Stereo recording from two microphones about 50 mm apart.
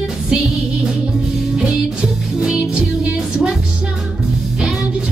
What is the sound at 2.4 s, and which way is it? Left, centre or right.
Music, centre.